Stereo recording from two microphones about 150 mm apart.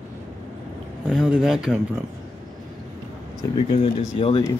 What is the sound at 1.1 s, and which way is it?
Speech, 5° right (ahead or behind).